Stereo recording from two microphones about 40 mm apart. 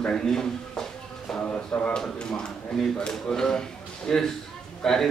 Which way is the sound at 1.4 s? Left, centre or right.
Left.